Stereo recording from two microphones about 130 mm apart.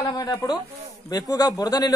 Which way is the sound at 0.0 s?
30° left (ahead or behind).